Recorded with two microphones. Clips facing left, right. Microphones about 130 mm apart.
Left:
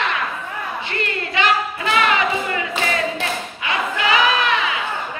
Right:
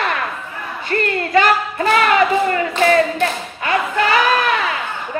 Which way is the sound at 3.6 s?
45° right (ahead or behind).